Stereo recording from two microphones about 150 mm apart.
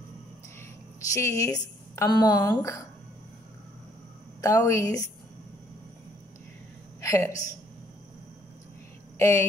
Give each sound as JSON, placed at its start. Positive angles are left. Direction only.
{"t": 1.1, "sound": "a woman's voice", "side_deg": 20}
{"t": 4.4, "sound": "a woman's voice", "side_deg": 20}
{"t": 7.0, "sound": "a woman's voice", "side_deg": 20}
{"t": 9.2, "sound": "a woman's voice", "side_deg": 20}